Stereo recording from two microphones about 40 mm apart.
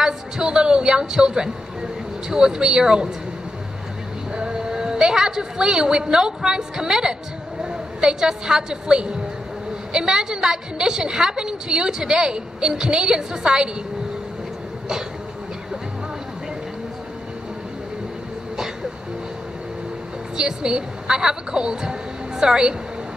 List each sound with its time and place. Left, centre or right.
0.0 s a woman's voice: centre
4.4 s a woman's voice: centre
20.3 s a woman's voice: centre